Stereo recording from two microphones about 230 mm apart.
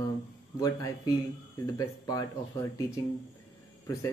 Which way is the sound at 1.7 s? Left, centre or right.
Centre.